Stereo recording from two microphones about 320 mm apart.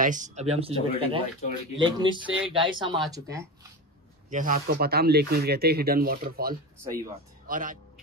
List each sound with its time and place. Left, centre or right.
0.0 s speech: right
4.3 s speech: right